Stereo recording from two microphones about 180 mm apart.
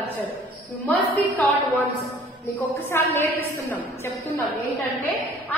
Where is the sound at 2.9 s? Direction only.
10° left (ahead or behind).